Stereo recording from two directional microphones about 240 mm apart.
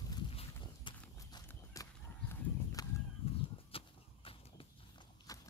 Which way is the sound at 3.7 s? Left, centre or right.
Left.